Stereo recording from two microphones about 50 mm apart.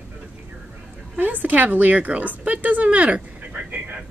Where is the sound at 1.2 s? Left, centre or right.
Right.